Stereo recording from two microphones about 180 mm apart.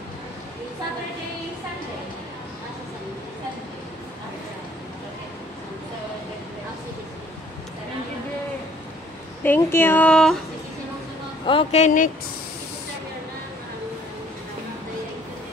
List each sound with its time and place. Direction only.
9.4 s speech: 10° left (ahead or behind)
11.4 s speech: 35° left (ahead or behind)